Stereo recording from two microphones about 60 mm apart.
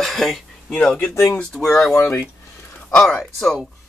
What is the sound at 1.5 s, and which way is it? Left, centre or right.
Speech, centre.